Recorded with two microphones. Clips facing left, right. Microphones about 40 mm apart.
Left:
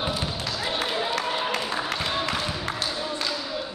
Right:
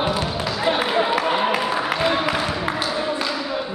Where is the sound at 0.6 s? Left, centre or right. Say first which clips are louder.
Right 8 dB; centre.